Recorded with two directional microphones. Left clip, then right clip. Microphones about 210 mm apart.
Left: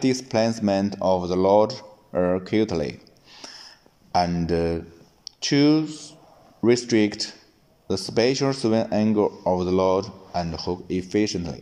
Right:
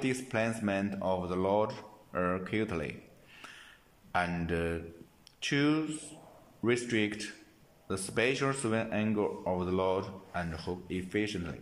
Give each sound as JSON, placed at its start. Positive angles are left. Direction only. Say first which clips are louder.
{"t": 0.0, "sound": "speech", "louder": "left 10 dB", "side_deg": 20}